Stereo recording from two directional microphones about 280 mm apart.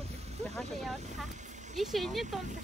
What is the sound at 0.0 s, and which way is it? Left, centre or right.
Vehicle, right.